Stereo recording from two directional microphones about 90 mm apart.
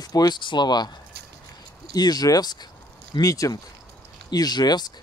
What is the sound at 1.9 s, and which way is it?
Speech, 45° left (ahead or behind).